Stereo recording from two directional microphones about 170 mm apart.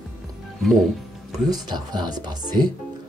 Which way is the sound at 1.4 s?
25° right (ahead or behind).